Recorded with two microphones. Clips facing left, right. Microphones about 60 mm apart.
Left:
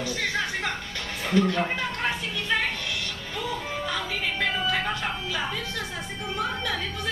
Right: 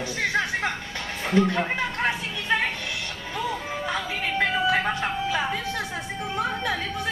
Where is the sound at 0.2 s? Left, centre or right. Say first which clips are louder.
Right 5 dB; right.